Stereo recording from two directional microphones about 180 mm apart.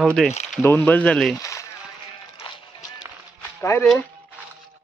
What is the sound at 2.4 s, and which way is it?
Music, 25° left (ahead or behind).